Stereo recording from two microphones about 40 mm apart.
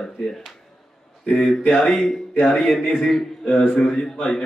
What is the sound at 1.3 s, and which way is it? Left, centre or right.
A man's voice, centre.